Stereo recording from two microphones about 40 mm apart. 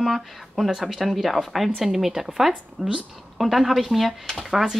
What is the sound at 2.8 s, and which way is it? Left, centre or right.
Speech, right.